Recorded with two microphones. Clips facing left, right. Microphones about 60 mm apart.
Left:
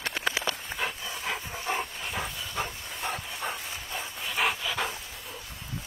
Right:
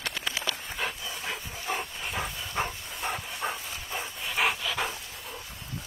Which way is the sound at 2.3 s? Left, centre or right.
Right.